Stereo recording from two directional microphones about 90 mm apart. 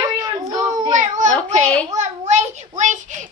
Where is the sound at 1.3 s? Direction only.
15° left (ahead or behind).